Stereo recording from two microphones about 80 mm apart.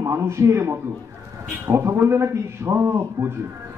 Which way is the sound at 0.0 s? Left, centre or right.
Right.